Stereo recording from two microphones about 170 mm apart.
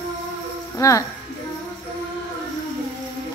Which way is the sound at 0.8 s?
20° left (ahead or behind).